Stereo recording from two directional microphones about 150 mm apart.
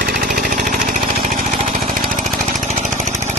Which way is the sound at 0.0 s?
75° right (ahead or behind).